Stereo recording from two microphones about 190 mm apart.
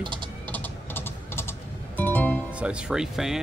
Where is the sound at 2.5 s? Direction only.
5° right (ahead or behind).